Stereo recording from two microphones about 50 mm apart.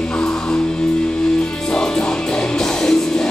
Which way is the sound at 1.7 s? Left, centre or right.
Centre.